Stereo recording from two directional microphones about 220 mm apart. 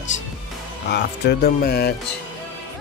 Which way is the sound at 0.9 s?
50° left (ahead or behind).